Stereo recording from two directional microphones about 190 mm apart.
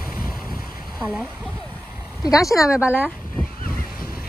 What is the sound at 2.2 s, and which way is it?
Speech, 15° left (ahead or behind).